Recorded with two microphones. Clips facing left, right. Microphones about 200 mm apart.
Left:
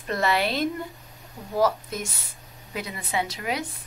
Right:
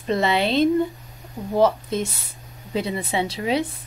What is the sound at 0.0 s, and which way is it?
A woman's voice, 25° right (ahead or behind).